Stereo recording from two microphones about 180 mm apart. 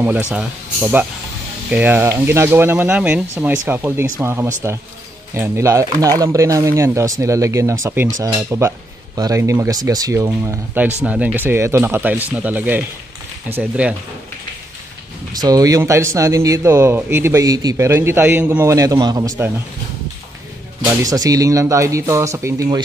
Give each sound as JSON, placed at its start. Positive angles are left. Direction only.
{"t": 0.0, "sound": "speech", "side_deg": -10}
{"t": 15.3, "sound": "speech", "side_deg": -20}
{"t": 20.8, "sound": "speech", "side_deg": -20}